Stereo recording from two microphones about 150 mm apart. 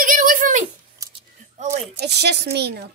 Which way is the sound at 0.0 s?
60° right (ahead or behind).